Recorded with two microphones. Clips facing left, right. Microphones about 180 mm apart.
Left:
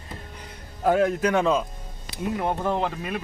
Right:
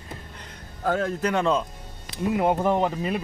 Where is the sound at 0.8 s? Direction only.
15° left (ahead or behind).